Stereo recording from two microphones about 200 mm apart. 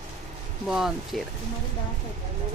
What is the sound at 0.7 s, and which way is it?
Speech, 5° right (ahead or behind).